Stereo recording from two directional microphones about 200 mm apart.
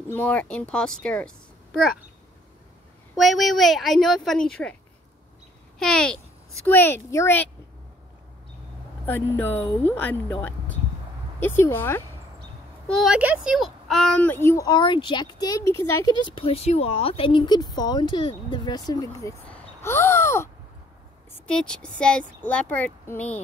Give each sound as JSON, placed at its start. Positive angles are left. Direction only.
{"t": 0.1, "sound": "a woman's voice", "side_deg": 10}
{"t": 3.2, "sound": "a woman's voice", "side_deg": 0}
{"t": 5.8, "sound": "a woman's voice", "side_deg": 5}
{"t": 9.0, "sound": "speech", "side_deg": 10}
{"t": 12.8, "sound": "a woman's voice", "side_deg": 0}
{"t": 19.8, "sound": "a sound", "side_deg": 15}
{"t": 21.3, "sound": "speech", "side_deg": 5}